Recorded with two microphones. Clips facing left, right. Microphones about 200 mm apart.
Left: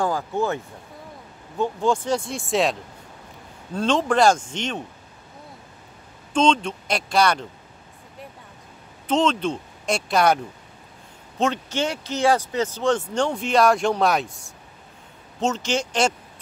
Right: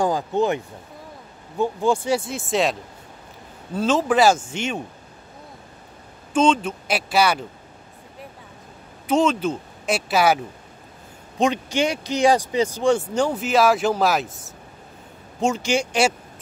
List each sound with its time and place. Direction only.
0.0 s speech: 20° right (ahead or behind)
1.6 s speech: 10° right (ahead or behind)
6.3 s speech: 5° right (ahead or behind)
9.0 s a woman's voice: 10° right (ahead or behind)
15.4 s speech: 10° right (ahead or behind)